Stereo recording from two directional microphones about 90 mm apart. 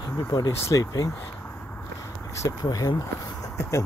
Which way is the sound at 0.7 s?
40° left (ahead or behind).